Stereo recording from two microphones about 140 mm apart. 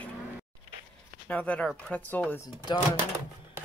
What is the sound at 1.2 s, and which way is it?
Speech, 10° left (ahead or behind).